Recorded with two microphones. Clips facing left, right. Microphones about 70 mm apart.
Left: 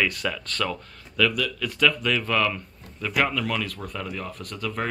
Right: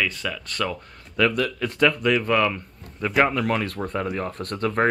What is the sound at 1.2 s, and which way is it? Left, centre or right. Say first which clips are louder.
Speech: right 3 dB; right.